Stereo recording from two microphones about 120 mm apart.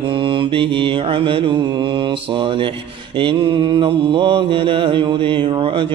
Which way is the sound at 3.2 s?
45° right (ahead or behind).